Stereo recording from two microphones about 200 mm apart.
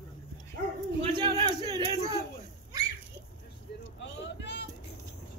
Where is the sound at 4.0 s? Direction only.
60° left (ahead or behind).